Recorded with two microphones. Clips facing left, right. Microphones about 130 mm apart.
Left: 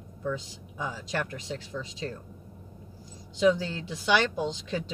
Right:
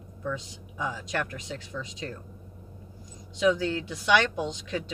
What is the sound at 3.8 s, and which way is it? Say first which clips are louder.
Speech: even; 30° left (ahead or behind).